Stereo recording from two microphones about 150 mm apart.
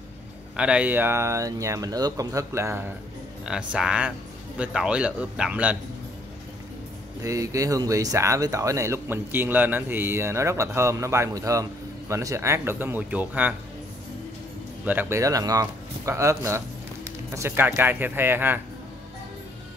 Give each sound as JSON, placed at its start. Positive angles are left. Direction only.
{"t": 0.6, "sound": "speech", "side_deg": -10}
{"t": 3.4, "sound": "speech", "side_deg": -5}
{"t": 7.2, "sound": "speech", "side_deg": -20}
{"t": 14.9, "sound": "speech", "side_deg": -15}